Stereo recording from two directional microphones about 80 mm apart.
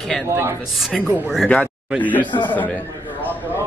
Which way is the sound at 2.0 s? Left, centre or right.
Left.